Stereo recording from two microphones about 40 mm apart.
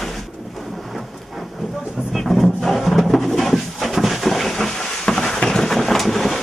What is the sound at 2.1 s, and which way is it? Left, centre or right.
Music, centre.